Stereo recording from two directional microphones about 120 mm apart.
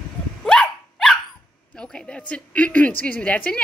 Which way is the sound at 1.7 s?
10° left (ahead or behind).